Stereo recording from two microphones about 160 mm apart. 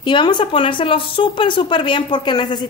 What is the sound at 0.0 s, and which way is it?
A woman's voice, 30° left (ahead or behind).